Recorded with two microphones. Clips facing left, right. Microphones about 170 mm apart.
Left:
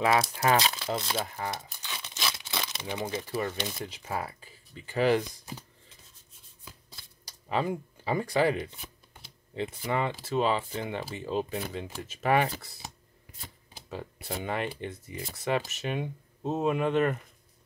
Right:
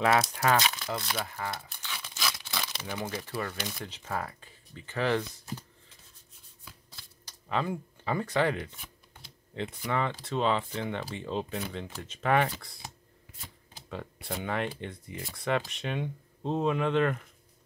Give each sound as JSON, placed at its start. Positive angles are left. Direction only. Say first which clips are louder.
{"t": 0.1, "sound": "speech", "louder": "left 1 dB", "side_deg": 15}
{"t": 0.6, "sound": "speech", "louder": "left 2 dB", "side_deg": 30}
{"t": 3.9, "sound": "speech", "louder": "left 1 dB", "side_deg": 10}
{"t": 7.2, "sound": "speech", "louder": "left 2 dB", "side_deg": 15}
{"t": 14.2, "sound": "speech", "louder": "even", "side_deg": 5}